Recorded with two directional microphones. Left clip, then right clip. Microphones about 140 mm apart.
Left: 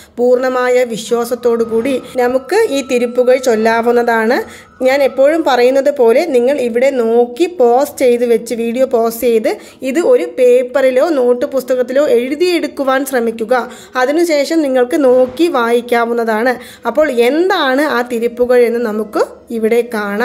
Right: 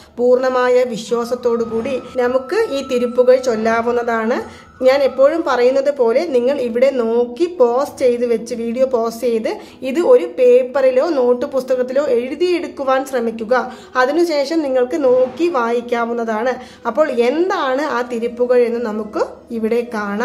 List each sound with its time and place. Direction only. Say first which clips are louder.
0.2 s a woman's voice: left 2 dB; 25° left (ahead or behind); by 4.5 s 45° left (ahead or behind)
4.8 s a woman's voice: left 2 dB; 30° left (ahead or behind)
17.5 s a woman's voice: left 5 dB; 40° left (ahead or behind)